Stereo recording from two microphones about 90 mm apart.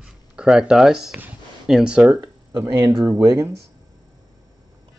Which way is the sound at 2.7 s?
40° right (ahead or behind).